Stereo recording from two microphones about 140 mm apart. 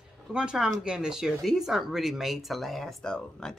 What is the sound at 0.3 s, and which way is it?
Speech, 5° right (ahead or behind).